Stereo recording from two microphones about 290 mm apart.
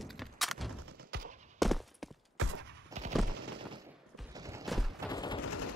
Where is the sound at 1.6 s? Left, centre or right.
Centre.